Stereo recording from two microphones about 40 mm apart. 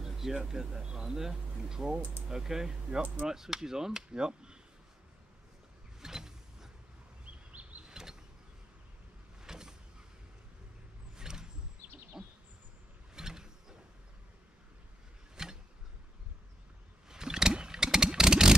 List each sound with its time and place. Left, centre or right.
0.0 s speech: centre
5.9 s power windows: centre
7.2 s bird vocalization: right
7.8 s power windows: centre
9.4 s vehicle: centre
11.1 s wild animals: centre
12.2 s bird: centre
13.1 s vehicle: centre
15.4 s a sound: centre
17.1 s vehicle: centre